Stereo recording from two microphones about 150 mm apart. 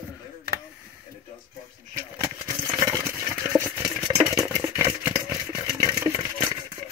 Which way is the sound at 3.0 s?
15° right (ahead or behind).